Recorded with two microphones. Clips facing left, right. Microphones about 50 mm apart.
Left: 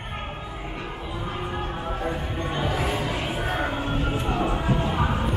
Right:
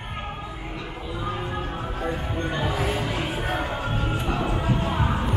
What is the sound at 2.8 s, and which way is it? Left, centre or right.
Music, centre.